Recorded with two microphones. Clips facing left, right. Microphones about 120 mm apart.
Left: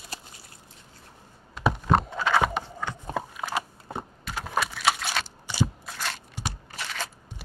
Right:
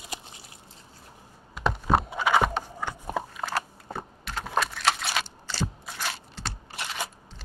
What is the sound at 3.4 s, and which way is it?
Biting, 5° left (ahead or behind).